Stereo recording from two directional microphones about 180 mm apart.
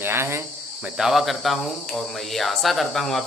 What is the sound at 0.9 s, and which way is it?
Speech, centre (ahead or behind).